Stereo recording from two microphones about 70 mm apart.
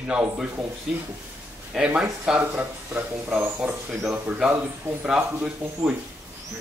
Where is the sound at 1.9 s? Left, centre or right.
Centre.